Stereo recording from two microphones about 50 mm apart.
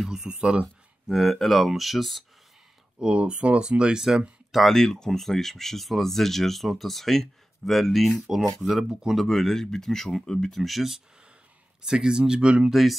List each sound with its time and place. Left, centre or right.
0.0 s speech: centre
1.0 s speech: centre
3.0 s speech: right
4.5 s speech: centre
4.7 s speech: centre
10.5 s speech: centre
11.8 s speech: centre